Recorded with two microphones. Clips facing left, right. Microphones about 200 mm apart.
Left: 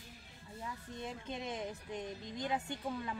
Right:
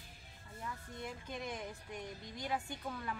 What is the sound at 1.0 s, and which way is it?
Speech, 25° left (ahead or behind).